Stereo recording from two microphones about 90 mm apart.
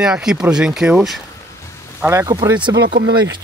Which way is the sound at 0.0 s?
5° right (ahead or behind).